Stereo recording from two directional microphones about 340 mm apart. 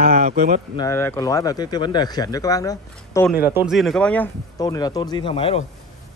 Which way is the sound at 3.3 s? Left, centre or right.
Centre.